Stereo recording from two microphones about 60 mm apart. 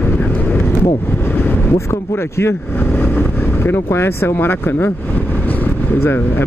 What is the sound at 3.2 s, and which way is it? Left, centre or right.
Speech, left.